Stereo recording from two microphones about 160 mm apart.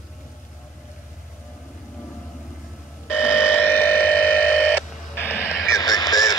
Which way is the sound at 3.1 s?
15° left (ahead or behind).